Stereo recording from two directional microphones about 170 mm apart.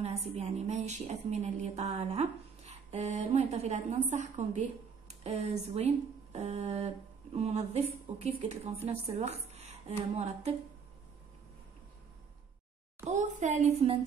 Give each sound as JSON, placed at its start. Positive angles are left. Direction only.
{"t": 0.0, "sound": "a woman's voice", "side_deg": -40}
{"t": 13.0, "sound": "a woman's voice", "side_deg": -45}